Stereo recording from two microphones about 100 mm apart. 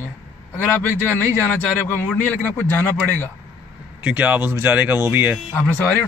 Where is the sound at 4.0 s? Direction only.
15° right (ahead or behind).